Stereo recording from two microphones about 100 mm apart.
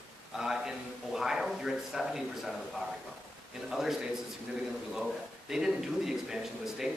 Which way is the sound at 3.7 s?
5° right (ahead or behind).